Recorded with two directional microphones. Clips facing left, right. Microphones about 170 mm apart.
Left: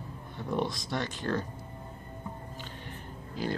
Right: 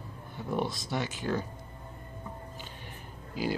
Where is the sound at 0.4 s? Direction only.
5° right (ahead or behind).